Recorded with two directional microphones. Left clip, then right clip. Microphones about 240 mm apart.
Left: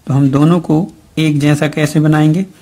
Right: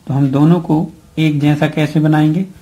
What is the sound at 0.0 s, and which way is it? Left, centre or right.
Speech, left.